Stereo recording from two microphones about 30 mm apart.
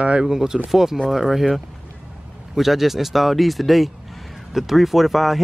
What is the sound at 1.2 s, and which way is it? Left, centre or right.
Speech, centre.